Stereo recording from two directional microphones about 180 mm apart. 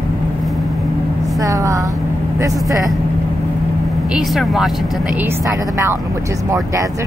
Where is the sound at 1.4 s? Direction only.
20° right (ahead or behind).